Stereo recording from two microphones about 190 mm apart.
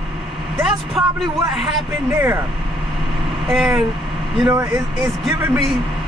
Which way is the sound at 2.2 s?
15° right (ahead or behind).